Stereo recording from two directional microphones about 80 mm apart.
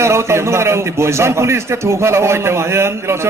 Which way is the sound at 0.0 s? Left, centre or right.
Right.